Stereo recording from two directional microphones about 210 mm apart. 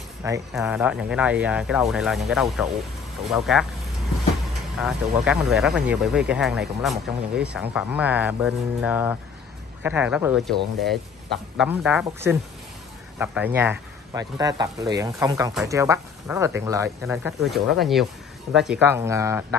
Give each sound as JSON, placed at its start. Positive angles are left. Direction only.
{"t": 0.2, "sound": "speech", "side_deg": -15}
{"t": 4.7, "sound": "speech", "side_deg": 0}
{"t": 11.5, "sound": "speech", "side_deg": -5}